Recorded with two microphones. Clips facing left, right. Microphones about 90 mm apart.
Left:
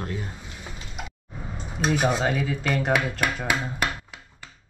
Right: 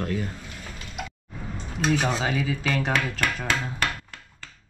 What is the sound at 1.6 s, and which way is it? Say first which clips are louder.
Dishes: left 1 dB; 10° left (ahead or behind).